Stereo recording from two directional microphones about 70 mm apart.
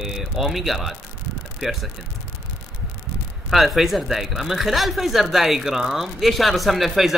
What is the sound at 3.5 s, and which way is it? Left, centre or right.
Speech, centre.